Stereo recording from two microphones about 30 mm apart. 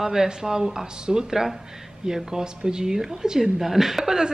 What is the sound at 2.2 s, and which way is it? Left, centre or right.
Speech, right.